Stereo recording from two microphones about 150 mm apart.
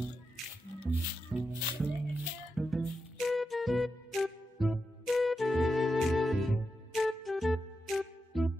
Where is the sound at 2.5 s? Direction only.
Centre (ahead or behind).